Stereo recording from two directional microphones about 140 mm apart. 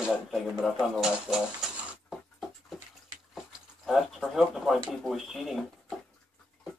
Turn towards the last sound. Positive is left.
turn(degrees=0)  # may be behind; listen again after turning